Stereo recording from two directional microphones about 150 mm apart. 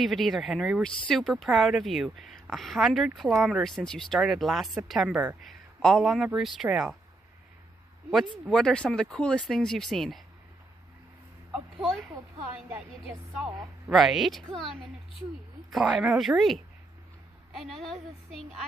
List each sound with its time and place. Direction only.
0.0 s speech: centre (ahead or behind)
5.4 s speech: centre (ahead or behind)
8.5 s speech: 5° left (ahead or behind)
11.8 s speech: centre (ahead or behind)
12.6 s speech: 10° right (ahead or behind)
15.2 s a woman's voice: 40° right (ahead or behind)
15.7 s speech: 5° right (ahead or behind)